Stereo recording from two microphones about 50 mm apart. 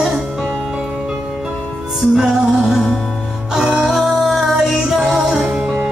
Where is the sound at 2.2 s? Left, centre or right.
Centre.